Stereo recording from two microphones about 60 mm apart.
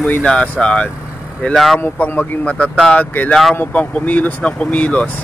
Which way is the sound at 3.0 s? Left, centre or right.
Left.